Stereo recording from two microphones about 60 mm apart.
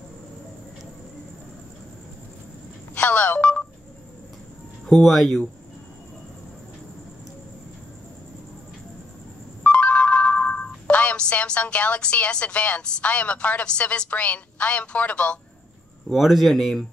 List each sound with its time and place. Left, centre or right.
2.9 s telephone dialing: left
4.8 s a sound: centre
5.1 s speech: centre
9.6 s speech: left
16.1 s speech: centre